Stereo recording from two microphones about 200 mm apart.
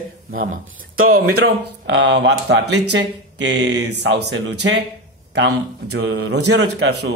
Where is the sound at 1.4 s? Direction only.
60° right (ahead or behind).